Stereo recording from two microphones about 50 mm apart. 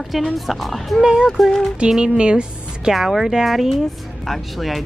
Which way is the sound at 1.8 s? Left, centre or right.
Centre.